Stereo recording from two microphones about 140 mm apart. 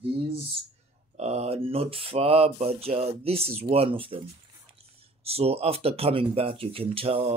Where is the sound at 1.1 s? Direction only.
50° right (ahead or behind).